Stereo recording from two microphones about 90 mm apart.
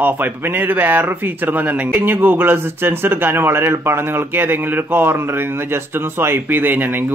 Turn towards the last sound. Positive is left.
turn(degrees=-20)  # may be behind; listen again after turning